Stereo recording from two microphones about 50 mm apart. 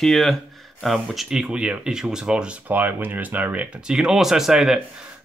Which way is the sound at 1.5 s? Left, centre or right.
Right.